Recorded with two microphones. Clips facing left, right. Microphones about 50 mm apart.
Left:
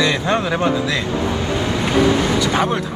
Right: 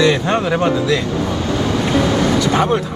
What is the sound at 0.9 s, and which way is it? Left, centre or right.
Vehicle, left.